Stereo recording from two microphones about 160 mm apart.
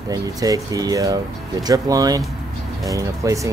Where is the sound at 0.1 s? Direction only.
25° right (ahead or behind).